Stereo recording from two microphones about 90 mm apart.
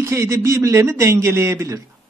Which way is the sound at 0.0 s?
30° right (ahead or behind).